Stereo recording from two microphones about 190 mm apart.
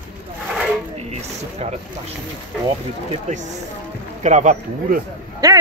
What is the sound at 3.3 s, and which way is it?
A man's voice, 40° right (ahead or behind).